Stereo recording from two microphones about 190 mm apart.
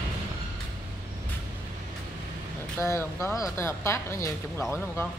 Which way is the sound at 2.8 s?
15° left (ahead or behind).